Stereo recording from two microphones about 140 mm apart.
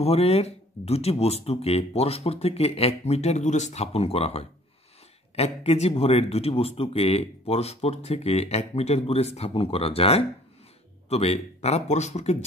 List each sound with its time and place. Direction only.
0.0 s speech: 45° left (ahead or behind)